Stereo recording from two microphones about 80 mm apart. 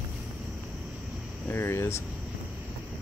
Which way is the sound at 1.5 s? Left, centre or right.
Left.